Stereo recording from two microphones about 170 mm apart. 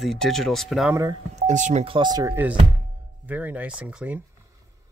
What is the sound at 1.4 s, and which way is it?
Speech, 45° right (ahead or behind).